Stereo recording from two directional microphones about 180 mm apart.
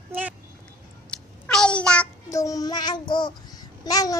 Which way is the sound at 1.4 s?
5° left (ahead or behind).